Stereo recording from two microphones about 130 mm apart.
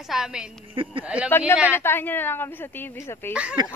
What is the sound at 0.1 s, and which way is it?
Speech, 5° right (ahead or behind).